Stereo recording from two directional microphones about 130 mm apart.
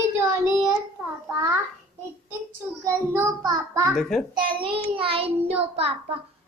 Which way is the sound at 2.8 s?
20° right (ahead or behind).